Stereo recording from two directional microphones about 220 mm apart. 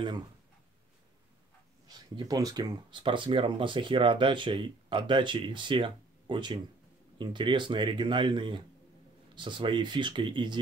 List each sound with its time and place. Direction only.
1.9 s speech: 15° right (ahead or behind)